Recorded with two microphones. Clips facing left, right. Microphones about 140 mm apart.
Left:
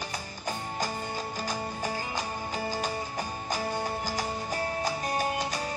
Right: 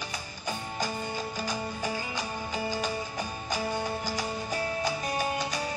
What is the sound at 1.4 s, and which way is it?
Music, 40° left (ahead or behind).